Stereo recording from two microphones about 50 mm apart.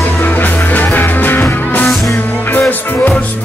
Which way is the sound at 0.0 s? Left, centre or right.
Left.